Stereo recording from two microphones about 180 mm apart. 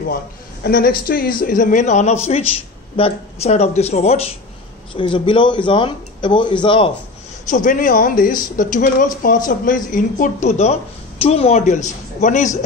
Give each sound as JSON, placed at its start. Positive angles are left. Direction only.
{"t": 0.7, "sound": "speech", "side_deg": 55}
{"t": 7.4, "sound": "speech", "side_deg": 45}